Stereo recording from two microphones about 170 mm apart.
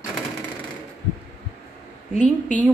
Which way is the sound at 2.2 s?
10° left (ahead or behind).